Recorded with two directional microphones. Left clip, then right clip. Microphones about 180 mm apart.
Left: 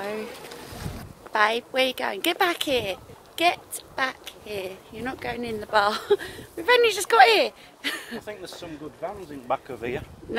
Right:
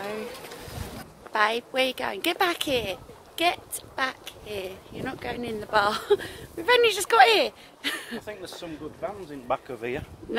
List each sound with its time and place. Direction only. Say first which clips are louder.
0.0 s pigeon: left 2 dB; 25° left (ahead or behind)
1.3 s a woman's voice: left 2 dB; 15° left (ahead or behind)